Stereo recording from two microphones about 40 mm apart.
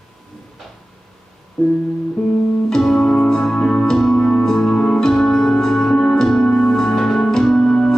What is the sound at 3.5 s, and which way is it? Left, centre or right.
Music, left.